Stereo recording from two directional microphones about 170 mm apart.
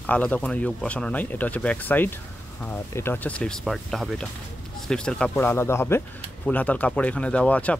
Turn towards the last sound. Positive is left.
turn(degrees=10)  # may be behind; listen again after turning